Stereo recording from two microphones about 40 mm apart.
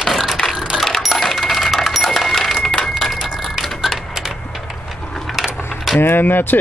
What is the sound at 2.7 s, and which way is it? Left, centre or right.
Wood, centre.